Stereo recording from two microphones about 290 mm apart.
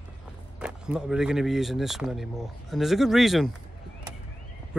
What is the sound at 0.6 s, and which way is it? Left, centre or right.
Speech, centre.